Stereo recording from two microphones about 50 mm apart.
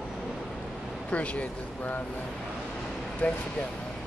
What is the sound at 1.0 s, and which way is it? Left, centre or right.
Speech, left.